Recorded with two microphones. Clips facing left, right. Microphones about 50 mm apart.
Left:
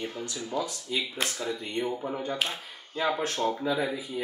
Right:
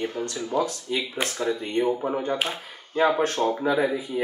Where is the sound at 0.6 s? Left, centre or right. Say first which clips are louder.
Right 6 dB; right.